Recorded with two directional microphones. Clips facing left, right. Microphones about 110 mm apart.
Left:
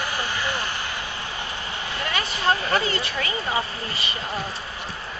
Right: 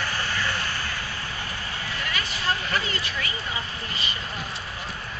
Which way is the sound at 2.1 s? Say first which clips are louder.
Left 6 dB; 30° left (ahead or behind).